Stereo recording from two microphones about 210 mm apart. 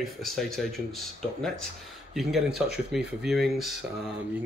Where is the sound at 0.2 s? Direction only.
Centre (ahead or behind).